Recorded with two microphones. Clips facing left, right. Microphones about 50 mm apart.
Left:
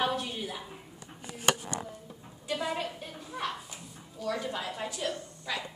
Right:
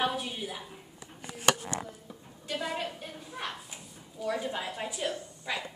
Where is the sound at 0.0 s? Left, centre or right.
Centre.